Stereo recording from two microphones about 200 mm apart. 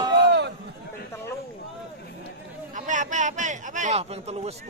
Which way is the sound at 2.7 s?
40° right (ahead or behind).